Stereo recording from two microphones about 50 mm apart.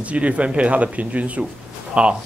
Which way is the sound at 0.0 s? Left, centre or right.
Right.